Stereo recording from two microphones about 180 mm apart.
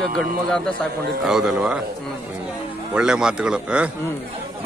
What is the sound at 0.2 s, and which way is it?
A man's voice, 5° left (ahead or behind).